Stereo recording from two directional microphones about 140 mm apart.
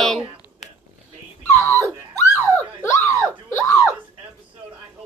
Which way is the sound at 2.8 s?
20° left (ahead or behind).